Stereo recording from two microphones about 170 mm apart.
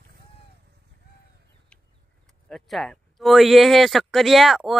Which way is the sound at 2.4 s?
Centre (ahead or behind).